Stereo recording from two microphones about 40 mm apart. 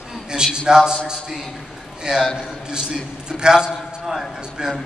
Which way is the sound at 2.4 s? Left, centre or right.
Centre.